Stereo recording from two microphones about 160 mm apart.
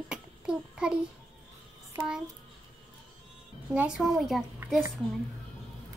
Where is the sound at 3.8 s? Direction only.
5° right (ahead or behind).